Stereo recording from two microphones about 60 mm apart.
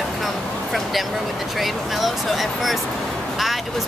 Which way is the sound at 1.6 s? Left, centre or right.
Centre.